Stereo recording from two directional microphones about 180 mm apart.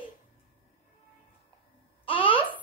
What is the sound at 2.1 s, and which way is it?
Babbling, 30° left (ahead or behind).